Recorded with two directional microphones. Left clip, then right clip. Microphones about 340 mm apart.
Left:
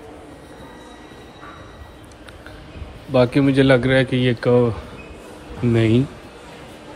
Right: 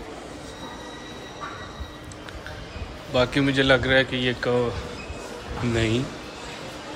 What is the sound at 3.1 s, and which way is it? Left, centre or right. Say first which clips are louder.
Speech: left 5 dB; centre.